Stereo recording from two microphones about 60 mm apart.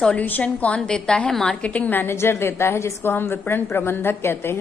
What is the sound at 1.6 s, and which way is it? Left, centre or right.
Speech, left.